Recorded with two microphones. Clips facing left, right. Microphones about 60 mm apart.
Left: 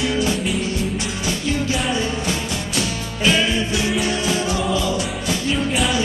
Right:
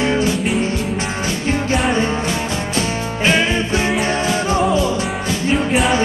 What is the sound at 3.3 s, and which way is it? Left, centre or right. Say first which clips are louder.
Music: right 2 dB; right.